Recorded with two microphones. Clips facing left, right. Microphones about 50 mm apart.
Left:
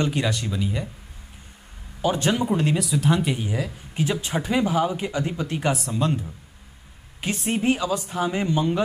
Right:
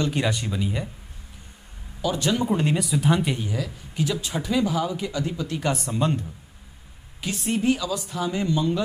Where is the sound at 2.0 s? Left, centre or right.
Left.